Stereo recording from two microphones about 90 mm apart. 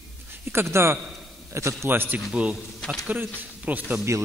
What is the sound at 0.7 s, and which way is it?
A man's voice, 30° right (ahead or behind).